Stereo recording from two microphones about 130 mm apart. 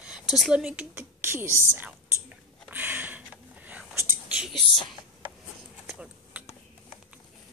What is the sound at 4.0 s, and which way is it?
Whispering, 20° right (ahead or behind).